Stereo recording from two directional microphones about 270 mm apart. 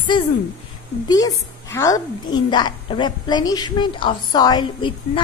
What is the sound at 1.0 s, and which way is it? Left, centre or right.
A woman's voice, centre.